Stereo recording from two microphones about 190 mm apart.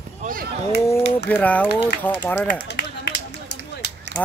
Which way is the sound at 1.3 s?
10° left (ahead or behind).